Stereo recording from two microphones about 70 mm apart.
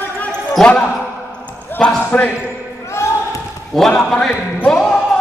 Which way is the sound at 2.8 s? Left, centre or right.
Left.